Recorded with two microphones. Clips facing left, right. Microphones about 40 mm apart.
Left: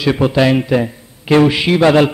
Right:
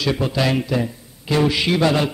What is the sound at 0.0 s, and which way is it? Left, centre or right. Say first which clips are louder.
A man's voice: left 7 dB; left.